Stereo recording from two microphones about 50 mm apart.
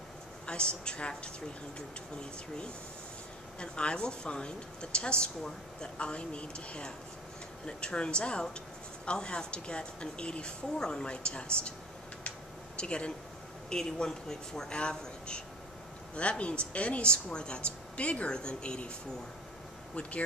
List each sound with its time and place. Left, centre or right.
0.5 s a woman's voice: centre
3.5 s a woman's voice: centre
12.3 s a sound: centre
13.7 s a woman's voice: centre
20.0 s a woman's voice: left